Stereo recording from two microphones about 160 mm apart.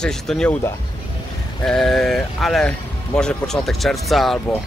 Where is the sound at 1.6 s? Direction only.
5° left (ahead or behind).